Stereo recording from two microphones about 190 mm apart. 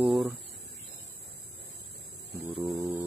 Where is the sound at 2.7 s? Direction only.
20° right (ahead or behind).